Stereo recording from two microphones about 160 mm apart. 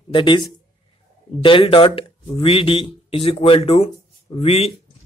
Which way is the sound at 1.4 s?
35° left (ahead or behind).